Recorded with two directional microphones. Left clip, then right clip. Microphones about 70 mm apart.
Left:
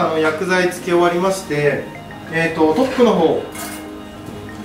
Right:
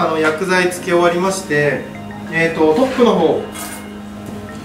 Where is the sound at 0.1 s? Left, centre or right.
Centre.